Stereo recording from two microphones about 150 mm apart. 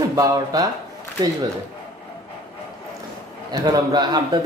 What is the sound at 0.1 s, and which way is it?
Speech, 25° right (ahead or behind).